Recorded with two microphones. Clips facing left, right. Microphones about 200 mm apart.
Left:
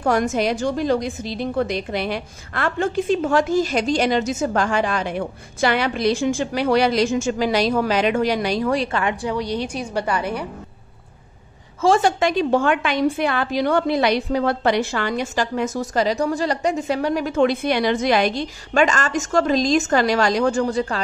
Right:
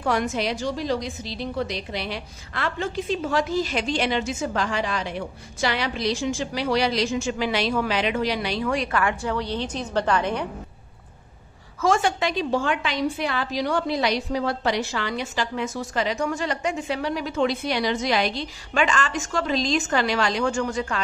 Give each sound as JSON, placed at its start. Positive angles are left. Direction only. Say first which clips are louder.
{"t": 0.0, "sound": "a woman's voice", "louder": "left 5 dB", "side_deg": 45}
{"t": 8.9, "sound": "a woman's voice", "louder": "left 2 dB", "side_deg": 20}
{"t": 11.8, "sound": "a woman's voice", "louder": "left 5 dB", "side_deg": 30}
{"t": 12.2, "sound": "a woman's voice", "louder": "left 6 dB", "side_deg": 50}